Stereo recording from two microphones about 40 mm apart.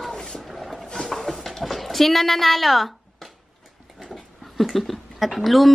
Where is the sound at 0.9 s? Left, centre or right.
Centre.